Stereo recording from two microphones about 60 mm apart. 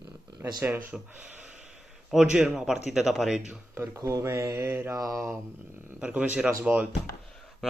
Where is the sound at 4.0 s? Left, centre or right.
Right.